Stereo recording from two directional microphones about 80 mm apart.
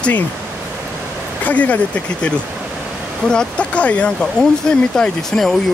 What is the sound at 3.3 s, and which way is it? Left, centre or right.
Speech, centre.